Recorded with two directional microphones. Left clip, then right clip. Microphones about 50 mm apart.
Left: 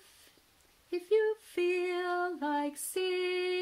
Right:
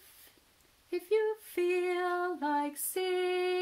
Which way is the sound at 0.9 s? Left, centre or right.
Left.